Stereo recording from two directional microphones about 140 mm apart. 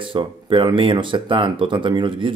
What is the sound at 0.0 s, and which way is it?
Speech, 35° right (ahead or behind).